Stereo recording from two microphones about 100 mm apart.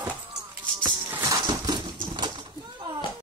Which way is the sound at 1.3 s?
45° right (ahead or behind).